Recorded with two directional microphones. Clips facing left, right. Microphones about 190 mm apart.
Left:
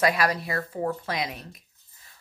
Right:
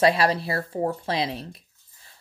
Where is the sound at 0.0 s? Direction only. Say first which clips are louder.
Right 4 dB; 30° right (ahead or behind).